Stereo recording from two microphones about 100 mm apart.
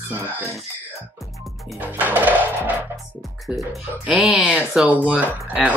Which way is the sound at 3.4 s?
Centre (ahead or behind).